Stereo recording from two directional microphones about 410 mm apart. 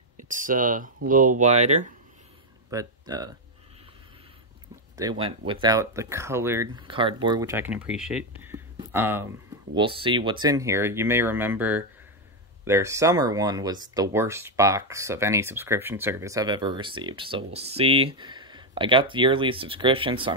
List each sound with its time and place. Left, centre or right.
0.2 s speech: centre
4.9 s speech: centre